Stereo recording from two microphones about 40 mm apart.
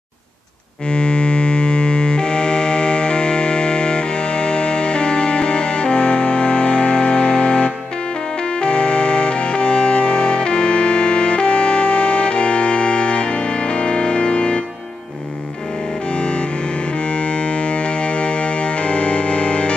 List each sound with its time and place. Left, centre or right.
0.8 s music: left
16.2 s music: left